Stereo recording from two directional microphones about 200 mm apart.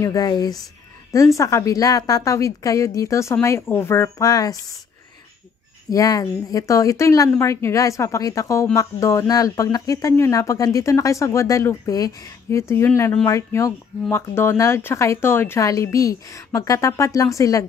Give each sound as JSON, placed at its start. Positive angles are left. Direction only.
{"t": 0.0, "sound": "speech", "side_deg": 20}
{"t": 5.9, "sound": "speech", "side_deg": 15}